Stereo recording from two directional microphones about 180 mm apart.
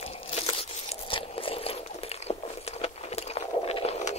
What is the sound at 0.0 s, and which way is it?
Crunch, 35° left (ahead or behind).